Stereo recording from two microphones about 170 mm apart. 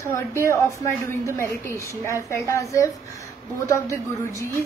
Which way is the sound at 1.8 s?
20° left (ahead or behind).